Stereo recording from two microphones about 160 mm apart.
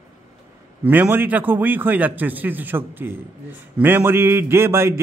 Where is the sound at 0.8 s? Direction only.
10° right (ahead or behind).